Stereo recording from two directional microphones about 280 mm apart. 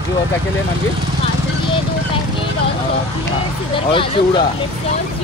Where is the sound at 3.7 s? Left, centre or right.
Centre.